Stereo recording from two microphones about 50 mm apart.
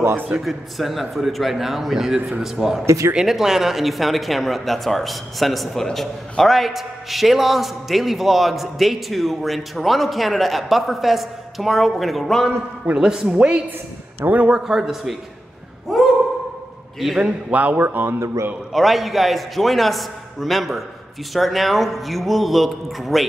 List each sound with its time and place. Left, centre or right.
0.5 s a man's voice: centre
2.8 s speech: right
3.2 s a man's voice: centre
12.9 s a man's voice: centre
14.2 s speech: right
14.5 s a man's voice: centre
15.9 s a sound: centre
17.5 s speech: right
18.2 s a man's voice: right
18.7 s a man's voice: centre